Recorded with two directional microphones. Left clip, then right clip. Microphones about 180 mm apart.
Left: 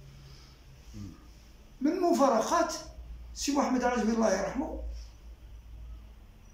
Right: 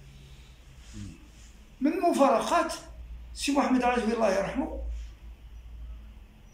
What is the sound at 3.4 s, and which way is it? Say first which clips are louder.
A man's voice: right 3 dB; 5° right (ahead or behind).